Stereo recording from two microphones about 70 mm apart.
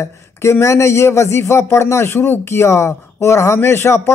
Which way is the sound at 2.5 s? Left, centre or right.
Left.